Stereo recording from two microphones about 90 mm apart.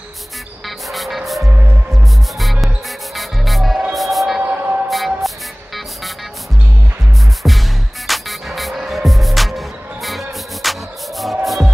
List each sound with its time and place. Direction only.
0.7 s music: centre (ahead or behind)
4.4 s a sound: 20° right (ahead or behind)
4.8 s music: centre (ahead or behind)
7.4 s music: 5° right (ahead or behind)